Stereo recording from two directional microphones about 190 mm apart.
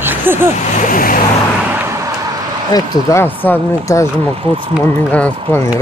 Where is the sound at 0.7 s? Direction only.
45° left (ahead or behind).